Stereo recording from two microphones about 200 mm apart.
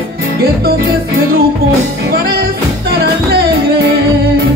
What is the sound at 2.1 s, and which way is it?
Music, 50° right (ahead or behind).